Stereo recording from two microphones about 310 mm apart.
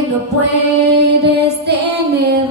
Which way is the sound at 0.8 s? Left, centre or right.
Right.